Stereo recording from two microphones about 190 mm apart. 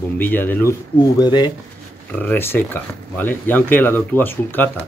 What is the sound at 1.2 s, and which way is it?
Speech, 20° left (ahead or behind).